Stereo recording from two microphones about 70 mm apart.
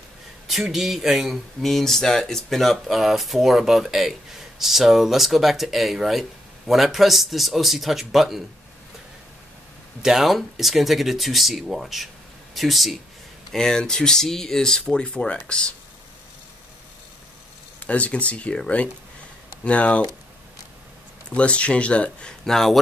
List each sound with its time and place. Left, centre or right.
0.5 s speech: centre
10.0 s speech: centre
17.8 s speech: centre
19.6 s speech: centre
21.3 s speech: centre
22.4 s speech: centre